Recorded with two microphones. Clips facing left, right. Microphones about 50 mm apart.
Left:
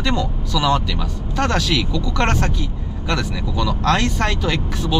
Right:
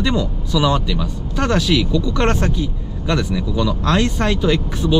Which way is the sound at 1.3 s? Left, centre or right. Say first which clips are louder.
Right 2 dB; left.